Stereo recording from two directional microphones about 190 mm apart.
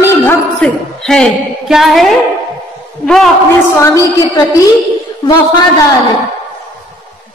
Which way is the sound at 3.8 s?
15° left (ahead or behind).